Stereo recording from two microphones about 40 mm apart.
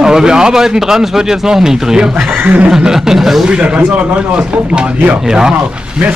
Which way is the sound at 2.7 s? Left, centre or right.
Centre.